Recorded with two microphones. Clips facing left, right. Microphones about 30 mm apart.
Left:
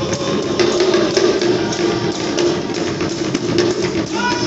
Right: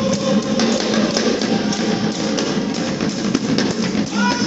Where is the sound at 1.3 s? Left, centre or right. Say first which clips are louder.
Left 4 dB; left.